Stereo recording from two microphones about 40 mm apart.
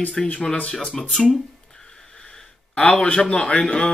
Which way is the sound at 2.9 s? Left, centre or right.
Left.